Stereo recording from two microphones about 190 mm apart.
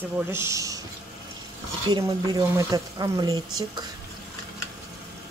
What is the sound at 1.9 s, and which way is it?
Speech, 20° right (ahead or behind).